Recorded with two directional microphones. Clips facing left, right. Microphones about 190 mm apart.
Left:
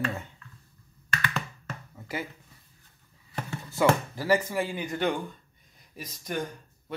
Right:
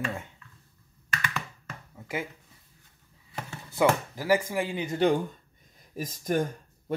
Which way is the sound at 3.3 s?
15° right (ahead or behind).